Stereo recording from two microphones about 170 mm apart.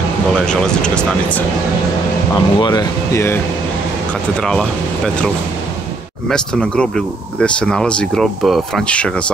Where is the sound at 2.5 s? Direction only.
25° left (ahead or behind).